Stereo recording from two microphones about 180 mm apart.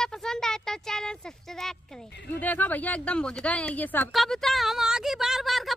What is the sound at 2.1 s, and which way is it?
Speech, 70° left (ahead or behind).